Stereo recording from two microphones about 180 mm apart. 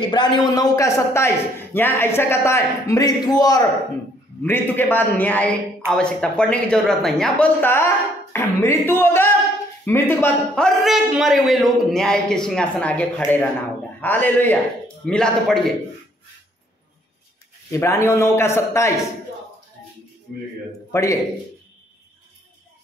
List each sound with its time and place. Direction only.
0.1 s a man's voice: 25° left (ahead or behind)
4.4 s a man's voice: 10° left (ahead or behind)
17.6 s a man's voice: 15° left (ahead or behind)
20.9 s a man's voice: 15° left (ahead or behind)